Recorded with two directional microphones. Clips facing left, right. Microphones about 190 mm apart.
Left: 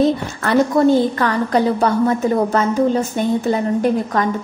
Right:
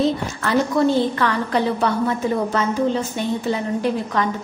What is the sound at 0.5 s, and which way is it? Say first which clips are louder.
A woman's voice: left 4 dB; 45° left (ahead or behind).